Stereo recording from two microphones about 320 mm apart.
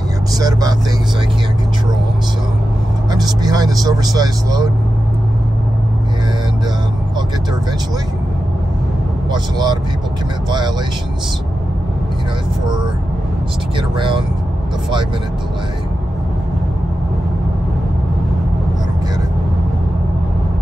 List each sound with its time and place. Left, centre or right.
0.4 s speech: centre
3.1 s speech: centre
9.3 s speech: centre
13.7 s speech: centre